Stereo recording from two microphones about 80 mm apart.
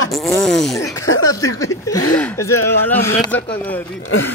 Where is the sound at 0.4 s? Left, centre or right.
Centre.